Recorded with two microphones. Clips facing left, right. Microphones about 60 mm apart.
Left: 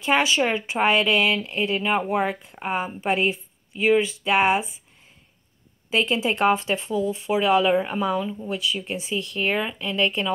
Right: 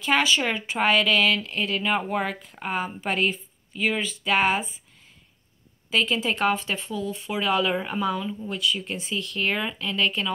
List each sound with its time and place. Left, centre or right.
0.0 s speech: centre
5.9 s speech: centre